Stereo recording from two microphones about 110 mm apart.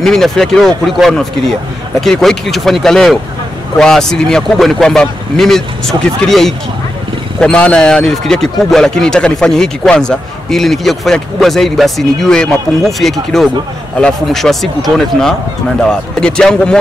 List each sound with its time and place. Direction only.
0.0 s speech: 5° left (ahead or behind)